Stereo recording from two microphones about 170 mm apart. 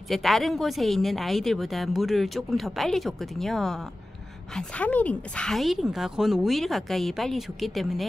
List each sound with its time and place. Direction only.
0.1 s a woman's voice: centre (ahead or behind)